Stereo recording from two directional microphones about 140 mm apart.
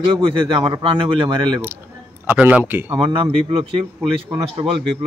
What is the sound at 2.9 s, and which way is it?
A man's voice, 40° right (ahead or behind).